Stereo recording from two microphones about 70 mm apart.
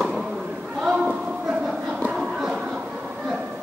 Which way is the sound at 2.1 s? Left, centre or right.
Centre.